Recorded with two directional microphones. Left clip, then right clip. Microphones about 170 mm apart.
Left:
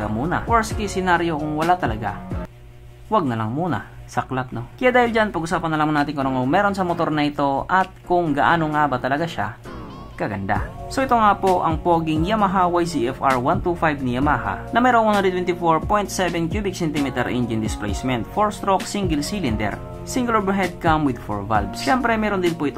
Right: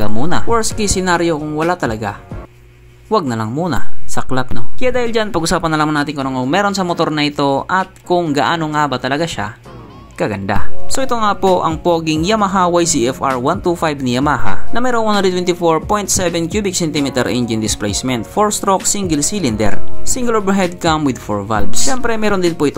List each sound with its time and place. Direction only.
0.0 s speech: 35° right (ahead or behind)
4.8 s speech: 25° right (ahead or behind)
5.9 s speech: 20° right (ahead or behind); by 22.5 s 35° right (ahead or behind)